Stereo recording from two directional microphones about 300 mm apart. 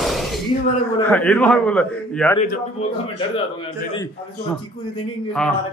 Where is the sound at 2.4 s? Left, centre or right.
Left.